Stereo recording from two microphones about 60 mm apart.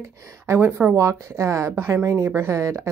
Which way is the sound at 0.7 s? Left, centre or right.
Right.